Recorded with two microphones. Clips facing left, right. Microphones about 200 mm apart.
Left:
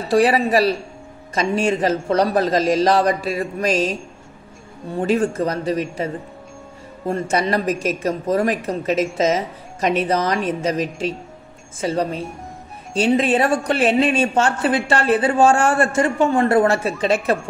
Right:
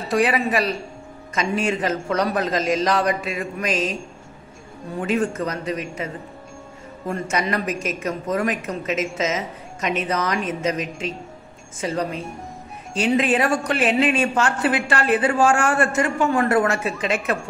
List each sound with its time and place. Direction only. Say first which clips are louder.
0.1 s a woman's voice: left 4 dB; 30° left (ahead or behind)